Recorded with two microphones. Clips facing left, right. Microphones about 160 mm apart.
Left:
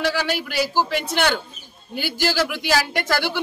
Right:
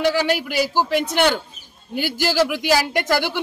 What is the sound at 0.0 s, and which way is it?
A man's voice, 15° right (ahead or behind).